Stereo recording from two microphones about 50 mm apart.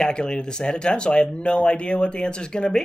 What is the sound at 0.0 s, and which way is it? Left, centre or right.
Speech, centre.